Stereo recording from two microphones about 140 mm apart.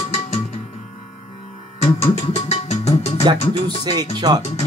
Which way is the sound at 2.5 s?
50° left (ahead or behind).